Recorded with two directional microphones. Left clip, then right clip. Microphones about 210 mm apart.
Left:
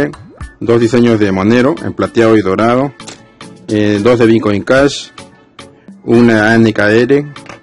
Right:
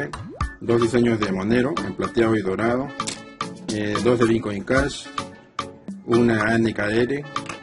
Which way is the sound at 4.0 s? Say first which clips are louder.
Left 10 dB; 45° left (ahead or behind).